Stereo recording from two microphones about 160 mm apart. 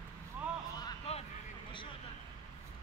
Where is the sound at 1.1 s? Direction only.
40° left (ahead or behind).